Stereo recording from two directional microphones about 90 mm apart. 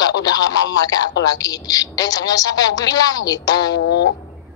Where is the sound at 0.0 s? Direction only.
45° left (ahead or behind).